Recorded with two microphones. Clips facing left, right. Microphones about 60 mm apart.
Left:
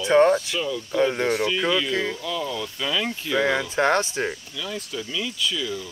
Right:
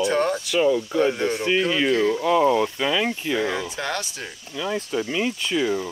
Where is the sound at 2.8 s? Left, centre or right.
Centre.